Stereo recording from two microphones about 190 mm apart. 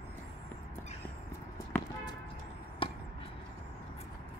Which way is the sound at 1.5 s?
20° left (ahead or behind).